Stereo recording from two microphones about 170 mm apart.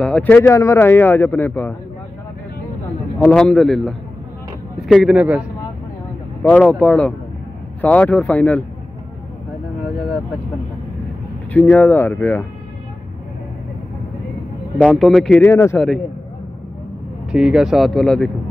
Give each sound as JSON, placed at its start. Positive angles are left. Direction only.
{"t": 0.0, "sound": "a man's voice", "side_deg": 5}
{"t": 3.2, "sound": "speech", "side_deg": 10}
{"t": 6.4, "sound": "a man's voice", "side_deg": 10}
{"t": 11.5, "sound": "a man's voice", "side_deg": 10}
{"t": 14.9, "sound": "speech", "side_deg": 0}
{"t": 17.3, "sound": "speech", "side_deg": -5}